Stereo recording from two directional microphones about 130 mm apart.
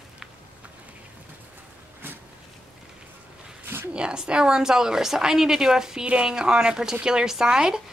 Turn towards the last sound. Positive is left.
turn(degrees=-5)  # may be behind; listen again after turning